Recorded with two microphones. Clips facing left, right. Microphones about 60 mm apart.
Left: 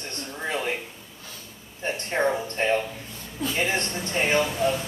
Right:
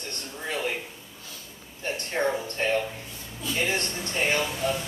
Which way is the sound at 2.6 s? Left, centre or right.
Left.